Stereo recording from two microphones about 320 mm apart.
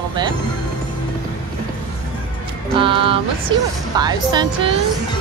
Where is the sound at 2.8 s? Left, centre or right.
Centre.